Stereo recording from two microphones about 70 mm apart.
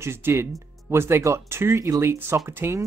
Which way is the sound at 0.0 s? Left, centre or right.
Right.